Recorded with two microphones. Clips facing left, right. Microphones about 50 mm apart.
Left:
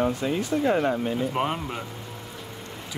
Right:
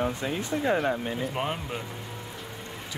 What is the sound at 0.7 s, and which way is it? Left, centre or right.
Speech, centre.